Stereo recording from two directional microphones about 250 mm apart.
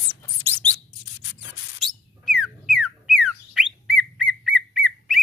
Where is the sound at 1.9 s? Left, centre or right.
Centre.